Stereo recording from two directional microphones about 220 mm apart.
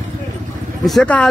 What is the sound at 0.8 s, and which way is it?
Speech, 5° left (ahead or behind).